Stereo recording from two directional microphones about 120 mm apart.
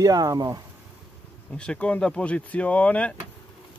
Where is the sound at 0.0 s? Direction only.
30° right (ahead or behind).